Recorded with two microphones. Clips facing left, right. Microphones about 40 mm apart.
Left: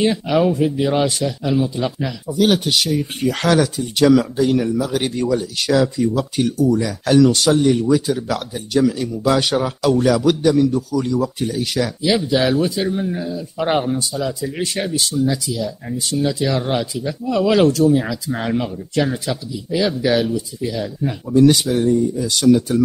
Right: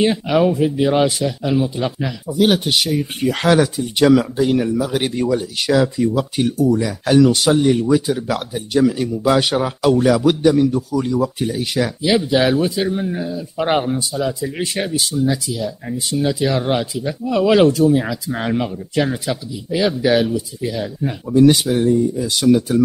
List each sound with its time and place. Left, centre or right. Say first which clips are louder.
0.0 s speech: right 1 dB; centre
15.3 s speech: even; centre